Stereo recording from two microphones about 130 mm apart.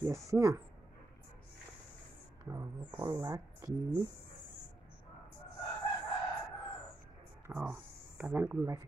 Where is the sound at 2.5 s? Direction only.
20° right (ahead or behind).